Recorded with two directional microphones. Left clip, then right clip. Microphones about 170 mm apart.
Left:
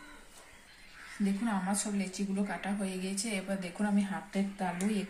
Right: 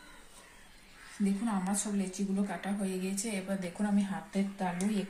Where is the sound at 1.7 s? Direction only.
20° right (ahead or behind).